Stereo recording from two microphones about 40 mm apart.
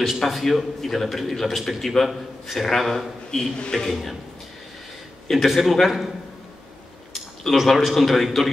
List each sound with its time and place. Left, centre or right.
0.2 s a man's voice: centre
3.3 s a man's voice: centre
3.9 s a man's voice: centre
5.3 s a man's voice: centre
7.5 s a man's voice: centre